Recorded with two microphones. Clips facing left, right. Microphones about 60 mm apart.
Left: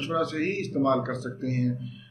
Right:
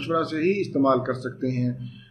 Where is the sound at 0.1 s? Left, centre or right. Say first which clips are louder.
Right 5 dB; right.